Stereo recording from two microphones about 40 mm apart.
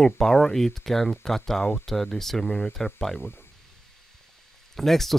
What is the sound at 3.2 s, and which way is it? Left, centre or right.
Speech, left.